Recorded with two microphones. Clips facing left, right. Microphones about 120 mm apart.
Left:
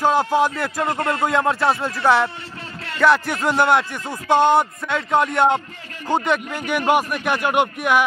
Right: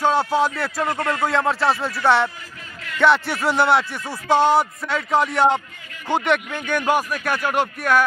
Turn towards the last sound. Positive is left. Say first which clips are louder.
# left 1 dB
turn(degrees=15)  # may be behind; listen again after turning